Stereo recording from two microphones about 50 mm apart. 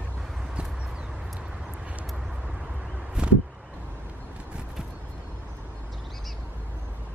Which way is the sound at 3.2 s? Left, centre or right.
Centre.